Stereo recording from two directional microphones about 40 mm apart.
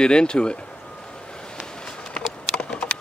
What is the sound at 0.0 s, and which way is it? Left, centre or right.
Speech, left.